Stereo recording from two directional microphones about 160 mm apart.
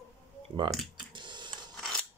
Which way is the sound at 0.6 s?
30° right (ahead or behind).